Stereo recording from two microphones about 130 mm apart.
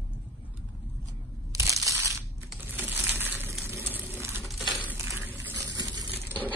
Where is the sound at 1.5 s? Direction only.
25° right (ahead or behind).